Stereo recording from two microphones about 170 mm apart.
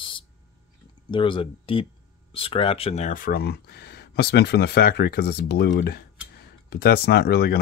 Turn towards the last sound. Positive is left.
turn(degrees=70)  # may be behind; listen again after turning